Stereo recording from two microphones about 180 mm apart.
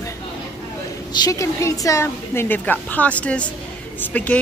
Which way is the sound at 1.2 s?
20° left (ahead or behind).